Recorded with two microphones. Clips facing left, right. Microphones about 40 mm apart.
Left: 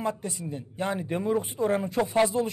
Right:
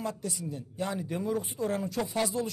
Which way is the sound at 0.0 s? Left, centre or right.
Left.